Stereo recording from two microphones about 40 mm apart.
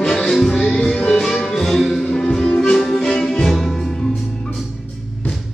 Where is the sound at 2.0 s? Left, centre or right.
Centre.